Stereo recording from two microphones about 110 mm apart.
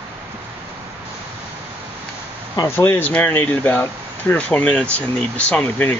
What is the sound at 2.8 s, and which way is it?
Speech, 20° left (ahead or behind).